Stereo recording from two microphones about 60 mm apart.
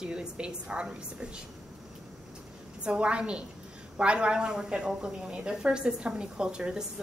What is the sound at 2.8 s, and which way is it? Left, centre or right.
A woman's voice, centre.